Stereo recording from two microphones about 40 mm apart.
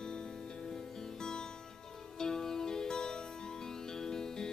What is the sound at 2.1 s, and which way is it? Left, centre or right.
Music, centre.